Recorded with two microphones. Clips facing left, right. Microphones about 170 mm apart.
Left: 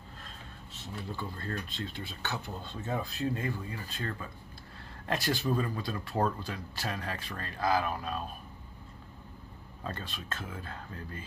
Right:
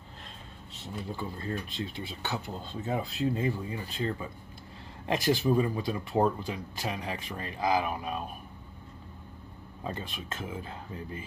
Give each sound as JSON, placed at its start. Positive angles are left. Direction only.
{"t": 0.9, "sound": "speech", "side_deg": -15}
{"t": 9.8, "sound": "speech", "side_deg": -15}